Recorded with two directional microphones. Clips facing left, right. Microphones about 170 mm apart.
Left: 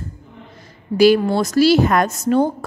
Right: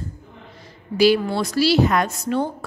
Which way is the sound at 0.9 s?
50° left (ahead or behind).